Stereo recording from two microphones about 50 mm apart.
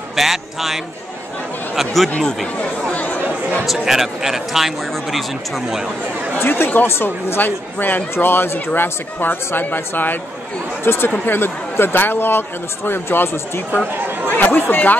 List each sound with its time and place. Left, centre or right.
0.1 s a sound: centre
2.1 s speech: centre
2.9 s chatter: left
3.6 s speech: centre
6.4 s speech: left